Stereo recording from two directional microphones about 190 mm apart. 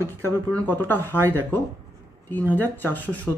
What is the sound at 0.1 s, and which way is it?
Speech, 10° left (ahead or behind).